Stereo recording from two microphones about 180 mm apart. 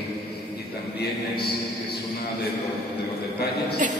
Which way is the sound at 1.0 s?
60° left (ahead or behind).